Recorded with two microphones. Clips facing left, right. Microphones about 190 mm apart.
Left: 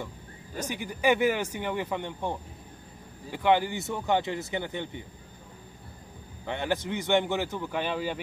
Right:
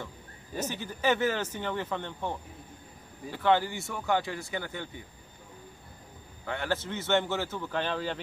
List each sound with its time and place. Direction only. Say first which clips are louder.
0.7 s a man's voice: left 3 dB; 10° left (ahead or behind)
6.4 s a man's voice: left 2 dB; 20° left (ahead or behind)